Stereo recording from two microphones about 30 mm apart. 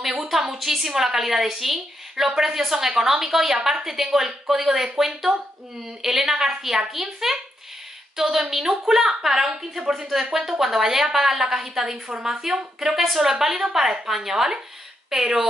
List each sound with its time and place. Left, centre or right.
0.3 s a woman's voice: centre